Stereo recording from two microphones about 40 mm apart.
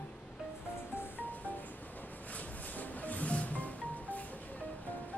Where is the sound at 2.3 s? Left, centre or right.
Left.